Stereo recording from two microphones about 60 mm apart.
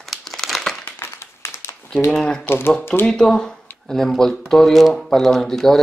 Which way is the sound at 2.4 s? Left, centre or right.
Left.